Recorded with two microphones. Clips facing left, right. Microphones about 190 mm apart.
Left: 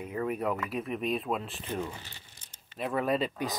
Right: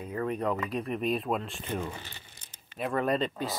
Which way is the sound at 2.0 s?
60° right (ahead or behind).